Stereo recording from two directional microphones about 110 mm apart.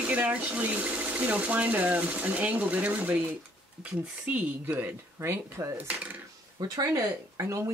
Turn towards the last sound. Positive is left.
turn(degrees=-30)  # may be behind; listen again after turning